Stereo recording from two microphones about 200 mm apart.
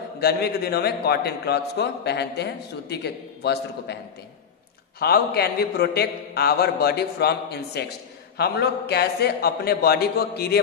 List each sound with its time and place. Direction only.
0.2 s a man's voice: 50° left (ahead or behind)
5.0 s a man's voice: 50° left (ahead or behind)